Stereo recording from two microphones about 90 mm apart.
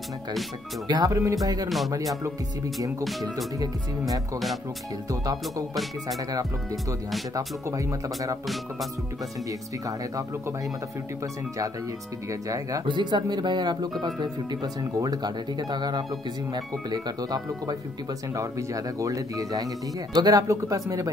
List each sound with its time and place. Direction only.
0.8 s speech: 50° right (ahead or behind)
3.0 s speech: centre (ahead or behind)
5.2 s speech: 45° right (ahead or behind)
9.5 s speech: 40° right (ahead or behind)
12.3 s speech: 40° right (ahead or behind)
12.8 s speech: 60° right (ahead or behind); by 20.8 s 40° right (ahead or behind)